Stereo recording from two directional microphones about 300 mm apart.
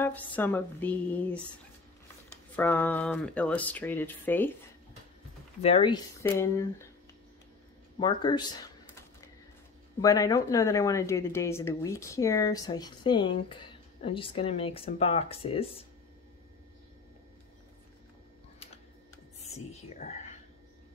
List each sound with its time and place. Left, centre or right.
0.0 s speech: centre
2.5 s speech: centre
5.6 s a woman's voice: centre
8.0 s speech: centre
10.0 s a woman's voice: centre
19.4 s whispering: left